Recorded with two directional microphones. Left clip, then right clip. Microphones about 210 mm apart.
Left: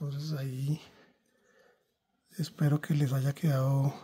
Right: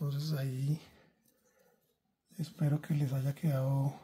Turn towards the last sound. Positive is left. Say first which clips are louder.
# left 4 dB
turn(degrees=40)  # may be behind; listen again after turning